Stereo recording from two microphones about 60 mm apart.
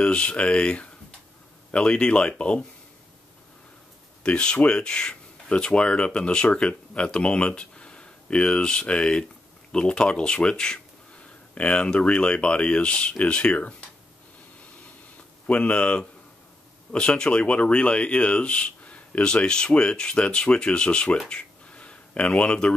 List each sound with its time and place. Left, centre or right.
0.0 s speech: centre
4.2 s speech: centre
15.4 s speech: left
21.3 s a sound: centre